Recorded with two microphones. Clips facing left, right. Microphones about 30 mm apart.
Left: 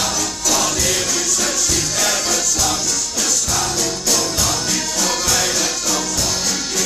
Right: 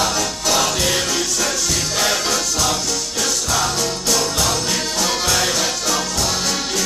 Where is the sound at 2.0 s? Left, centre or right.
Right.